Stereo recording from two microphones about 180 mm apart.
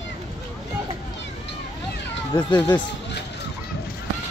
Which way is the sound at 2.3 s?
25° left (ahead or behind).